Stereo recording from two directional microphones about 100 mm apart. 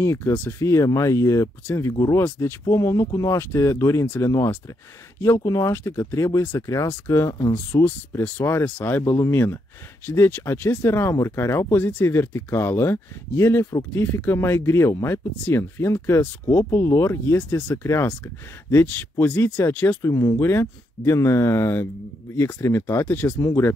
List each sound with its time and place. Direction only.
0.0 s speech: 25° left (ahead or behind)
5.2 s speech: 30° left (ahead or behind)